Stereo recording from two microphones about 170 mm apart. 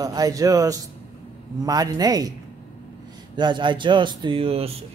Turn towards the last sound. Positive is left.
turn(degrees=-35)  # may be behind; listen again after turning